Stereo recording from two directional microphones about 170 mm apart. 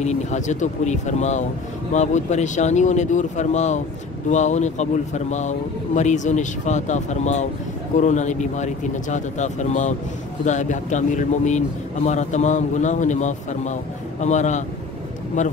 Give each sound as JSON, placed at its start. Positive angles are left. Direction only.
{"t": 0.0, "sound": "speech", "side_deg": 45}